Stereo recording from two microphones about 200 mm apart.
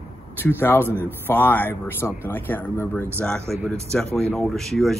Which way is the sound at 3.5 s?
Centre (ahead or behind).